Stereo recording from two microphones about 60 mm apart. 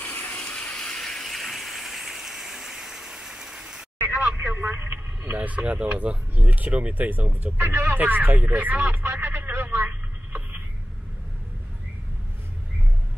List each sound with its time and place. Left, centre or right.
0.0 s water: left
0.5 s a sound: centre
4.0 s vehicle: right
4.9 s speech: right
7.5 s speech: right
7.9 s radio: right